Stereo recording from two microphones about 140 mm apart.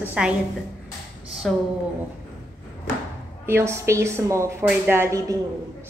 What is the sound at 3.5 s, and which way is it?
A woman's voice, 20° right (ahead or behind).